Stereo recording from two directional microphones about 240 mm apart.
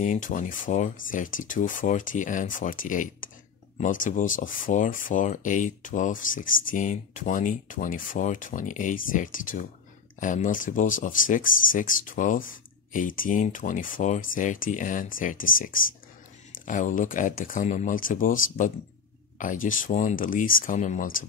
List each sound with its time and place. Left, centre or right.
0.0 s speech: left